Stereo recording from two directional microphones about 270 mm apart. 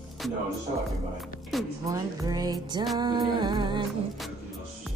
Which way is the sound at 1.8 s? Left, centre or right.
Centre.